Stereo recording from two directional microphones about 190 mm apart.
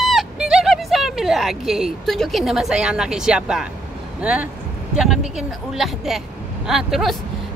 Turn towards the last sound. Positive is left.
turn(degrees=0)  # may be behind; listen again after turning